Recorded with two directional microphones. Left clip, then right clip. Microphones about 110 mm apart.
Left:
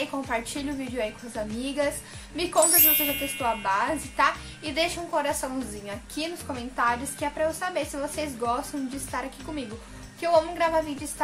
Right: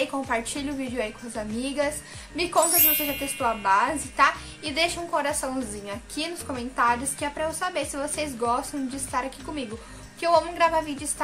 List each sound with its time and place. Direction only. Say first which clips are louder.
0.0 s a woman's voice: right 3 dB; 20° right (ahead or behind)
2.7 s a sound: even; centre (ahead or behind)
3.6 s a woman's voice: right 4 dB; 20° right (ahead or behind)